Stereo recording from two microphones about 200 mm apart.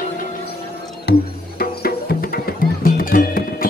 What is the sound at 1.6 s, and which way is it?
Music, 50° left (ahead or behind).